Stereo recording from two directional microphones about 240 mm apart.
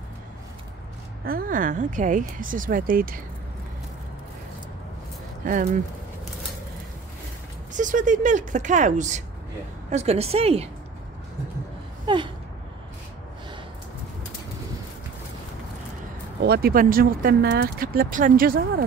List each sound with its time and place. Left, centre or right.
1.2 s speech: right
5.4 s speech: right
7.7 s a woman's voice: right
12.1 s a woman's voice: centre
16.4 s speech: right